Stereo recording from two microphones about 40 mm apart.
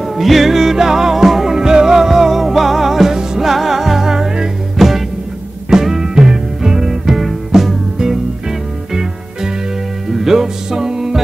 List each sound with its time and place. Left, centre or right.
0.0 s music: centre